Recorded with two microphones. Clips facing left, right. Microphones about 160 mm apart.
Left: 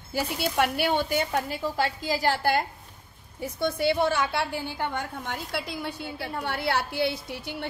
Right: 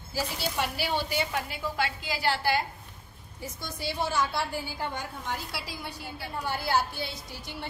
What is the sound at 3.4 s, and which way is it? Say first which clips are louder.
A woman's voice: left 11 dB; 60° left (ahead or behind).